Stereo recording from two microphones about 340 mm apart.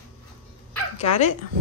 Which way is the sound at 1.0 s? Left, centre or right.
Centre.